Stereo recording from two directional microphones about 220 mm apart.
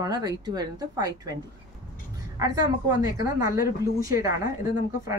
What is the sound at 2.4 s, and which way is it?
A woman's voice, 15° right (ahead or behind).